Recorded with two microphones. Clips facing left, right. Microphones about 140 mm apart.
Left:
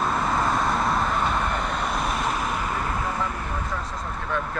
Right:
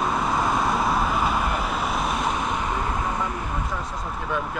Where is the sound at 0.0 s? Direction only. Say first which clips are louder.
Even; centre (ahead or behind).